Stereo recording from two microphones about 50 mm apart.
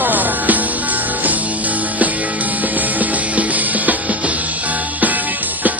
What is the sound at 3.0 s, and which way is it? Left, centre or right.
Music, right.